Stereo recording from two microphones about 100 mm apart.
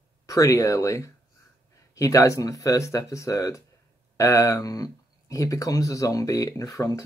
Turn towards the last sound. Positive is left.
turn(degrees=35)  # may be behind; listen again after turning